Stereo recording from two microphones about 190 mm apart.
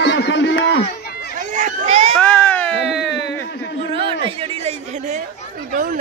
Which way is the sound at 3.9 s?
25° right (ahead or behind).